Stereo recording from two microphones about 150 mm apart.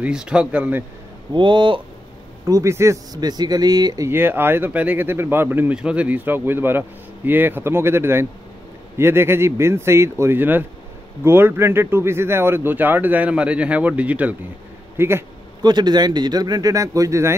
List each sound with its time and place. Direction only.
0.0 s speech: 5° right (ahead or behind)
1.3 s speech: 30° right (ahead or behind)
2.4 s speech: 20° right (ahead or behind)
15.6 s speech: 30° right (ahead or behind)